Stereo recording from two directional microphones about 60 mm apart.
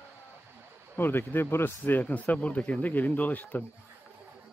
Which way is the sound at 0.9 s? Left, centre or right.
Left.